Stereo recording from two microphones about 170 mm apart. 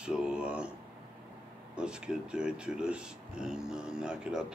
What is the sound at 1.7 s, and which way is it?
Speech, 5° right (ahead or behind).